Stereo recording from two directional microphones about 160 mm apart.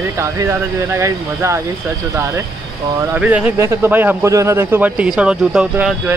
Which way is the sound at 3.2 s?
10° right (ahead or behind).